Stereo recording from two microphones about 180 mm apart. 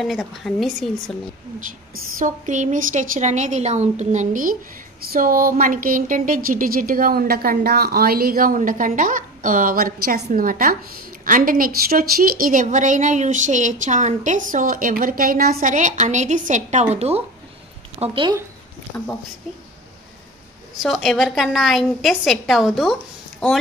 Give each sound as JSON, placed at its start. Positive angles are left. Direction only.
{"t": 0.0, "sound": "a woman's voice", "side_deg": 0}
{"t": 2.1, "sound": "speech", "side_deg": -45}
{"t": 20.7, "sound": "a woman's voice", "side_deg": 0}